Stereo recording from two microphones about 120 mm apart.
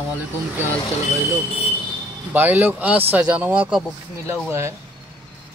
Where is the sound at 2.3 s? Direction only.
15° right (ahead or behind).